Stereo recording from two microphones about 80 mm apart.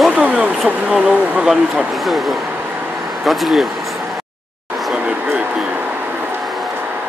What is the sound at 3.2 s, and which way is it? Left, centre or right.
Speech, centre.